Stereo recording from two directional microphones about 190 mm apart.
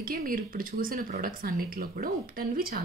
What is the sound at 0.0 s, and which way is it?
A woman's voice, 50° right (ahead or behind).